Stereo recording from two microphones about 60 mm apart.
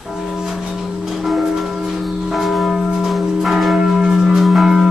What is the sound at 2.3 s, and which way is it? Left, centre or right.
Church bell, centre.